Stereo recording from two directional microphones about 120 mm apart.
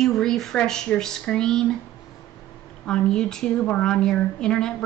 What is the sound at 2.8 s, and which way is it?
A woman's voice, 5° left (ahead or behind).